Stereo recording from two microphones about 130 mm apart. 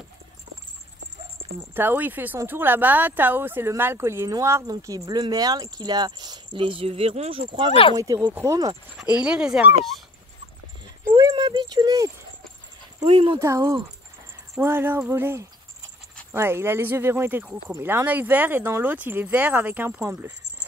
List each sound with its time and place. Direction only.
1.7 s speech: 15° right (ahead or behind); by 7.7 s 45° right (ahead or behind)
7.9 s speech: 30° right (ahead or behind)
8.3 s speech: 15° right (ahead or behind)
11.1 s a sound: 30° right (ahead or behind)
13.0 s speech: 45° right (ahead or behind)
13.4 s speech: 25° right (ahead or behind)